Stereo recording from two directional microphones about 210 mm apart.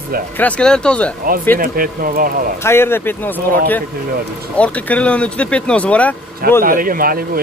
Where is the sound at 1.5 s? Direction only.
40° right (ahead or behind).